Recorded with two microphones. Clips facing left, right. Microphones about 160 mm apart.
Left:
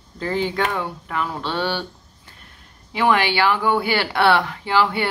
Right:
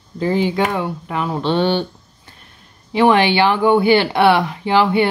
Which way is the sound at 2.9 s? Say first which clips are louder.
Right 6 dB; 25° right (ahead or behind).